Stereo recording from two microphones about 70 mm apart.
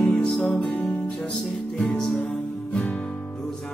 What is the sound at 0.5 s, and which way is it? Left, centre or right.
Music, centre.